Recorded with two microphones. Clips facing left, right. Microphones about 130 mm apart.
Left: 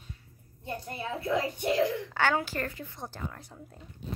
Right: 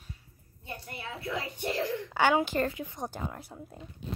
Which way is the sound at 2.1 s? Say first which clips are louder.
Right 3 dB; 15° right (ahead or behind).